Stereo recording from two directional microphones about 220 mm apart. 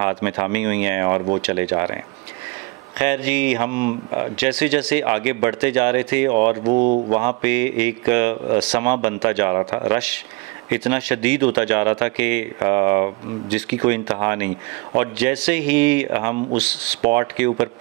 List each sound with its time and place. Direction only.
0.0 s speech: 10° right (ahead or behind)
3.0 s speech: 10° right (ahead or behind)
6.5 s speech: 30° right (ahead or behind)
7.1 s speech: 10° right (ahead or behind)